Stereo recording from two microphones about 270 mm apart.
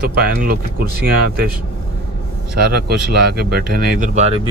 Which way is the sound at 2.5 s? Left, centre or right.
Right.